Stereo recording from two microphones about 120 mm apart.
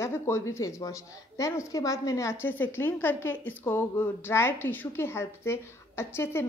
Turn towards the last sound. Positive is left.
turn(degrees=20)  # may be behind; listen again after turning